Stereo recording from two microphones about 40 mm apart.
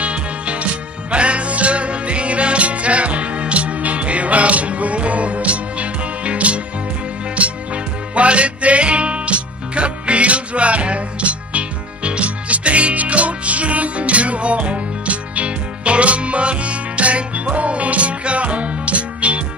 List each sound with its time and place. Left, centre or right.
0.0 s music: right